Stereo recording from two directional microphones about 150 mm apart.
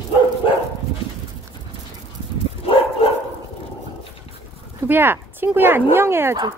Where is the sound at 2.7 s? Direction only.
35° left (ahead or behind).